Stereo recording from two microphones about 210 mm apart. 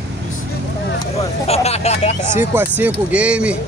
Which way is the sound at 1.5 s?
30° left (ahead or behind).